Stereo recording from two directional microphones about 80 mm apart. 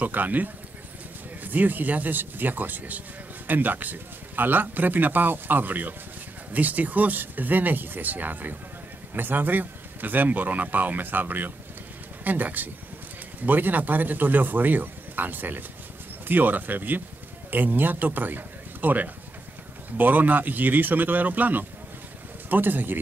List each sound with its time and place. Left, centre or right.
0.0 s a man's voice: right